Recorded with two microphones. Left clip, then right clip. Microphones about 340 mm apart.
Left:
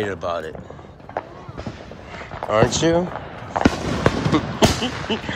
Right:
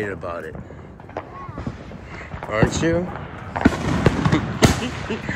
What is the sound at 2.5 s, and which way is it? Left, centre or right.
Speech, centre.